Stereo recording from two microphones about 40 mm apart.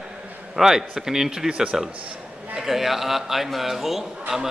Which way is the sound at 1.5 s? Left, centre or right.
Right.